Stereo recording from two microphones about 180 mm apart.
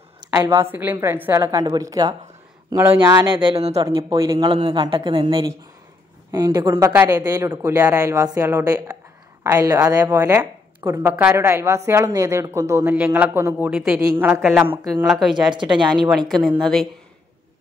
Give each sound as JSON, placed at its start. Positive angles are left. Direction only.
{"t": 0.2, "sound": "a woman's voice", "side_deg": -20}
{"t": 3.3, "sound": "a woman's voice", "side_deg": -30}
{"t": 15.0, "sound": "speech", "side_deg": 0}